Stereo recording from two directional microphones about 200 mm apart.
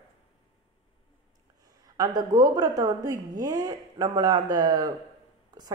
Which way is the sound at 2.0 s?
20° right (ahead or behind).